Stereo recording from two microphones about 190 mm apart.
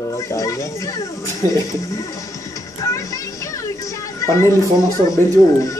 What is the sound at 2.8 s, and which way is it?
Music, 15° left (ahead or behind).